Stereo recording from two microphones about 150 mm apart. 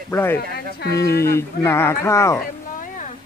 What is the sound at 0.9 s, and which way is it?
Speech, 90° left.